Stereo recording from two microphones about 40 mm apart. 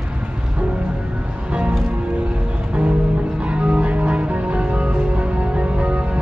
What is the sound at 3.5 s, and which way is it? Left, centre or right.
Music, right.